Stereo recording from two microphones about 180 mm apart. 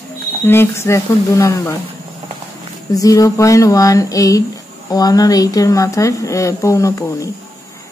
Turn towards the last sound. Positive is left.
turn(degrees=15)  # may be behind; listen again after turning